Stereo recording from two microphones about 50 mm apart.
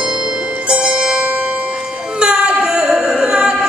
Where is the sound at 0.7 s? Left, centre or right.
Centre.